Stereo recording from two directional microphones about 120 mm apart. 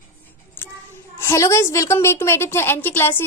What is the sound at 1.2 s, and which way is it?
A woman's voice, 25° left (ahead or behind).